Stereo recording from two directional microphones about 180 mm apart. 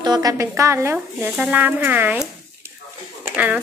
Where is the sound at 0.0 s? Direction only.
20° right (ahead or behind).